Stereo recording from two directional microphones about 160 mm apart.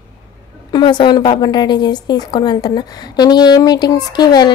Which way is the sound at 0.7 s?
30° left (ahead or behind).